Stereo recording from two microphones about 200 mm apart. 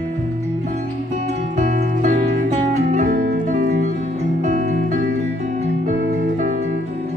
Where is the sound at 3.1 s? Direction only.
60° right (ahead or behind).